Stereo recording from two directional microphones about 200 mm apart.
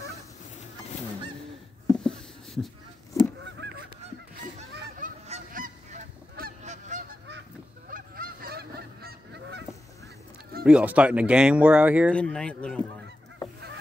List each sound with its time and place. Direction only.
2.0 s a sound: centre (ahead or behind)
3.4 s goose: 60° right (ahead or behind)
4.9 s goose: 40° right (ahead or behind); by 9.7 s 55° right (ahead or behind)
10.6 s speech: 5° right (ahead or behind)
12.1 s speech: 5° left (ahead or behind)